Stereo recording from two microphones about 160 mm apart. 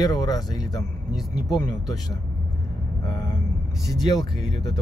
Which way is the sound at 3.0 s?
25° left (ahead or behind).